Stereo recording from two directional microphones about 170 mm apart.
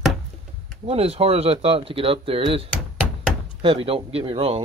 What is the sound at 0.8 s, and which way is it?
Speech, 35° right (ahead or behind).